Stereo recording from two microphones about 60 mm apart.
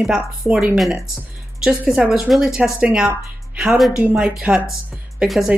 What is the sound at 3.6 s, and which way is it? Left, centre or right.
Speech, centre.